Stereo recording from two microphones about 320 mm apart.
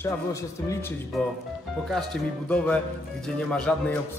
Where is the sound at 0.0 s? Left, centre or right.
Centre.